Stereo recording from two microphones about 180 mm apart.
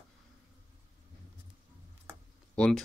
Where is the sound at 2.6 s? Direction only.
5° left (ahead or behind).